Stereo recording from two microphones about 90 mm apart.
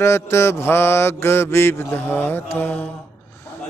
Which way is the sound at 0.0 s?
30° left (ahead or behind).